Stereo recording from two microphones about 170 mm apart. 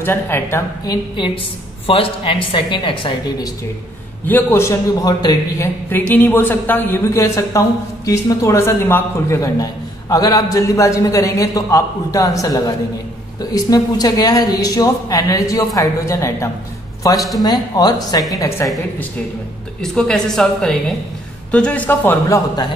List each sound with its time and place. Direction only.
0.0 s a man's voice: 15° left (ahead or behind)
1.1 s a woman's voice: 30° left (ahead or behind)
4.3 s a man's voice: 10° left (ahead or behind)
5.9 s a woman's voice: 10° left (ahead or behind)
19.8 s a woman's voice: 5° left (ahead or behind)